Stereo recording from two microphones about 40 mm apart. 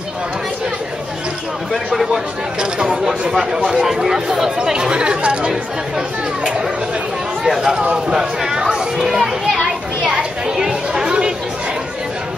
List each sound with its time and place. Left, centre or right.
2.6 s a sound: centre
3.8 s speech: centre
4.6 s speech: right
5.5 s a child's voice: centre
10.1 s chatter: right